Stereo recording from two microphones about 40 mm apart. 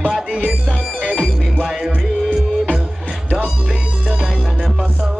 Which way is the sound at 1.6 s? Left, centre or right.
Centre.